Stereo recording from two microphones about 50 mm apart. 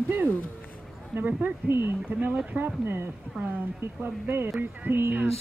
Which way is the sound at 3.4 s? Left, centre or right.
Right.